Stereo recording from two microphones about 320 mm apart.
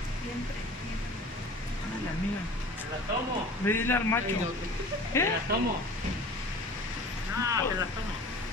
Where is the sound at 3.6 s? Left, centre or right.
Centre.